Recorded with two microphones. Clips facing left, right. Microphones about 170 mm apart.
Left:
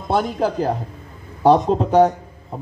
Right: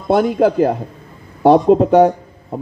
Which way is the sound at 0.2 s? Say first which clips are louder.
Right 7 dB; 15° right (ahead or behind).